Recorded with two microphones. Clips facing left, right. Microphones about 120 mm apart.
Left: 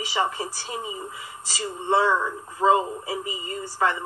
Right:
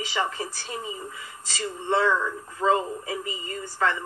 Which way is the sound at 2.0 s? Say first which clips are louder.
Left 1 dB; 30° left (ahead or behind).